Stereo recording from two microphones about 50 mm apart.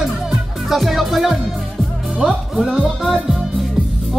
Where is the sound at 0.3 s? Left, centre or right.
Centre.